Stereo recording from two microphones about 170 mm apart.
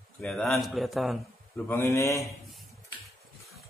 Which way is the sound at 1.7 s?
15° left (ahead or behind).